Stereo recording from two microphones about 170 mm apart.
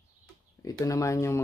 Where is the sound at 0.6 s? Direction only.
20° left (ahead or behind).